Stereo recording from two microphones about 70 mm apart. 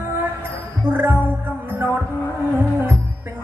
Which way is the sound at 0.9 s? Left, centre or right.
Right.